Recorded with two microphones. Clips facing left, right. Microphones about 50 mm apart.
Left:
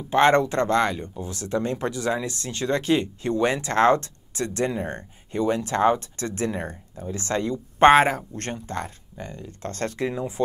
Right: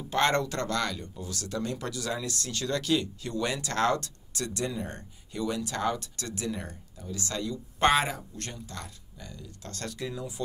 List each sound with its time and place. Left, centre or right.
0.1 s speech: left